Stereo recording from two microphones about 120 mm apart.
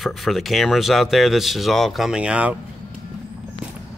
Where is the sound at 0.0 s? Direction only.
Centre (ahead or behind).